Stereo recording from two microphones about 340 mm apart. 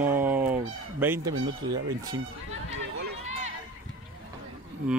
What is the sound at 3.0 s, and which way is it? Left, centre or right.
Run, centre.